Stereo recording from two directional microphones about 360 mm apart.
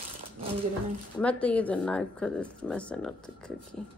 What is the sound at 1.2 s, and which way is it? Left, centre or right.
A woman's voice, centre.